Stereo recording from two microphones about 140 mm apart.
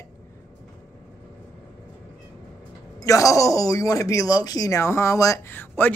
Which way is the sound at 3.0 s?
25° left (ahead or behind).